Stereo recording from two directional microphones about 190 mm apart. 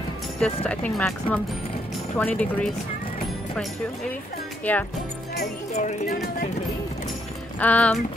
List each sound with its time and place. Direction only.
0.4 s speech: 5° left (ahead or behind)
4.7 s speech: 10° left (ahead or behind)
5.8 s speech: 45° left (ahead or behind)
7.5 s speech: 5° left (ahead or behind)